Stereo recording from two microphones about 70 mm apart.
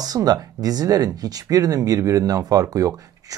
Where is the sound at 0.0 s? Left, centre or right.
Right.